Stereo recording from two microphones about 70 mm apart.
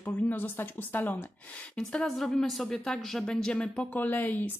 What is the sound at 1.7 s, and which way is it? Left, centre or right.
Speech, centre.